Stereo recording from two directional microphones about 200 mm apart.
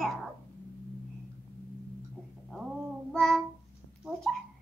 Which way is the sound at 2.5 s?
Centre (ahead or behind).